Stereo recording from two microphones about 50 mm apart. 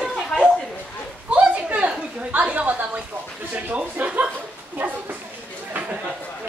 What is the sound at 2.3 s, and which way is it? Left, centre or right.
Speech, right.